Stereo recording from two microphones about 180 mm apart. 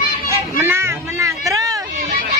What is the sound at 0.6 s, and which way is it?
Meow, 15° right (ahead or behind).